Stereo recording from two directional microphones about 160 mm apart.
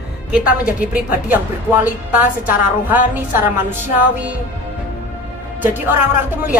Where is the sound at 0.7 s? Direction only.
10° right (ahead or behind).